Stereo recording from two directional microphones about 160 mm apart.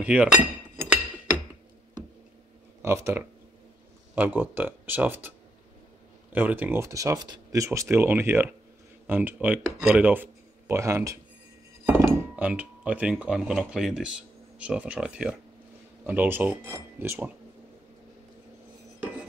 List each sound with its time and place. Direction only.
0.0 s cutlery: 10° right (ahead or behind)
2.8 s speech: 20° right (ahead or behind)
6.3 s speech: 10° right (ahead or behind)